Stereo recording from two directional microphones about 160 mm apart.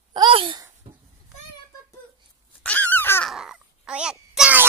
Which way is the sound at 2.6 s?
10° left (ahead or behind).